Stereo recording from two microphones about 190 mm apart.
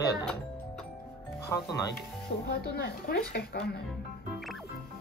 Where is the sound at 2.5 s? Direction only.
60° left (ahead or behind).